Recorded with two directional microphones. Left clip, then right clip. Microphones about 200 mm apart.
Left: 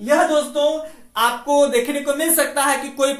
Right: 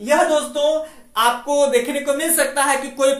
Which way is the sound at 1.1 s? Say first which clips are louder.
Even; 10° left (ahead or behind).